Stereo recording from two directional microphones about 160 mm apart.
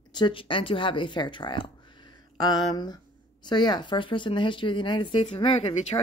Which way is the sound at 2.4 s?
25° left (ahead or behind).